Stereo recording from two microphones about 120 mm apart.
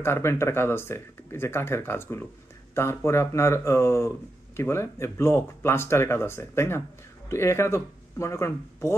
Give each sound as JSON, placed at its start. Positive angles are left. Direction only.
{"t": 0.0, "sound": "speech", "side_deg": 20}